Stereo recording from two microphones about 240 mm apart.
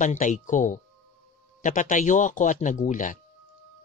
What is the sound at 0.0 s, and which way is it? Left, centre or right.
Speech, left.